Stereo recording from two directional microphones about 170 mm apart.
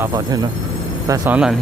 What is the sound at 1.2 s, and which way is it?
Speech, 5° right (ahead or behind).